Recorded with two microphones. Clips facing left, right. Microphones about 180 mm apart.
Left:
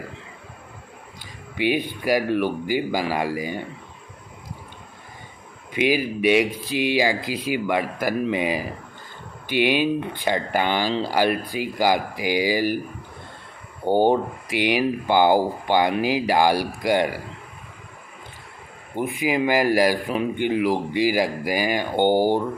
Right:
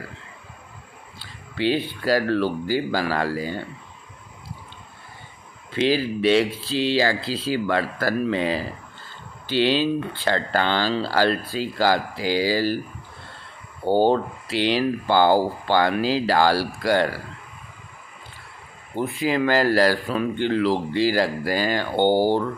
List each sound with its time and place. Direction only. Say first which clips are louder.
1.2 s speech: even; 15° left (ahead or behind)
5.7 s speech: even; 15° left (ahead or behind)
13.8 s speech: even; 15° left (ahead or behind)
18.9 s speech: even; 15° left (ahead or behind)